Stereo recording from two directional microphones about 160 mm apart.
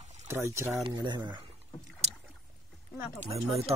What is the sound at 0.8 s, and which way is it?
Speech, 30° right (ahead or behind).